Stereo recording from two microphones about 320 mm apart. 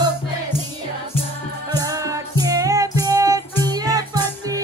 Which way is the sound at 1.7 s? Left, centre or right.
Centre.